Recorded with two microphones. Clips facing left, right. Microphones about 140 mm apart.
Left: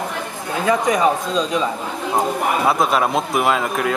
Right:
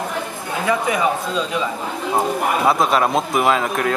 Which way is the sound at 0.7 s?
35° left (ahead or behind).